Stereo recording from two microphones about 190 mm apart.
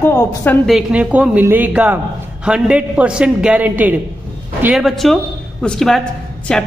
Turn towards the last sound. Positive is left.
turn(degrees=5)  # may be behind; listen again after turning